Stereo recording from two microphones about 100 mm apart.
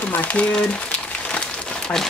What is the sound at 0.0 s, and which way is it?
Speech, 15° left (ahead or behind).